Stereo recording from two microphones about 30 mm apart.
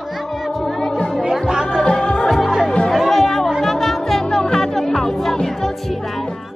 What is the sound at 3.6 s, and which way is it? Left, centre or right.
Music, centre.